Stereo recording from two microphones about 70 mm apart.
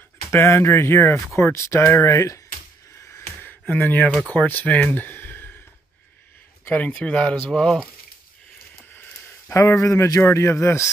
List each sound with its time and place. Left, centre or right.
0.3 s speech: left
3.3 s a sound: left
4.2 s speech: left
4.8 s a sound: left
6.6 s speech: left
9.5 s speech: left